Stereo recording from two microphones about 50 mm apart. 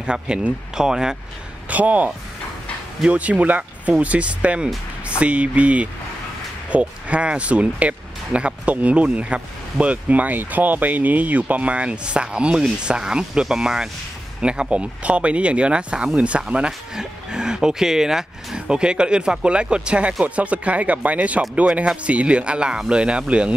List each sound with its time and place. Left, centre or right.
0.0 s speech: centre
1.7 s speech: right
3.1 s speech: right